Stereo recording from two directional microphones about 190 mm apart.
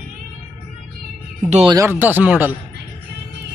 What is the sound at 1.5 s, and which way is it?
Speech, 30° right (ahead or behind).